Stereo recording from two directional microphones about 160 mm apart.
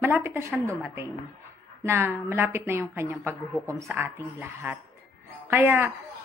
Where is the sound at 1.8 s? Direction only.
15° right (ahead or behind).